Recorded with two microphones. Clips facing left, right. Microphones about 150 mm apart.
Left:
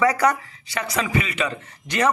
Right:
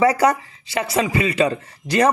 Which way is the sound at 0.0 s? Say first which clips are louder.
Right 3 dB; 30° right (ahead or behind).